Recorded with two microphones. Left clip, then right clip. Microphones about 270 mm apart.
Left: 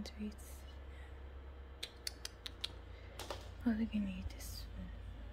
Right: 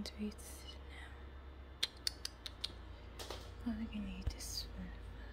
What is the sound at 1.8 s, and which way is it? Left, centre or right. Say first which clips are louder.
Creak: right 6 dB; centre.